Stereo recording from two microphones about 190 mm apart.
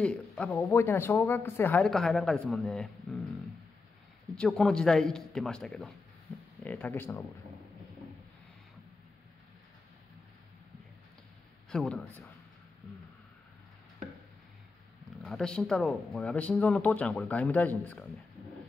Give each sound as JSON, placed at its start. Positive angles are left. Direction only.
{"t": 0.0, "sound": "a man's voice", "side_deg": 5}
{"t": 11.7, "sound": "a man's voice", "side_deg": 5}
{"t": 15.2, "sound": "speech", "side_deg": 5}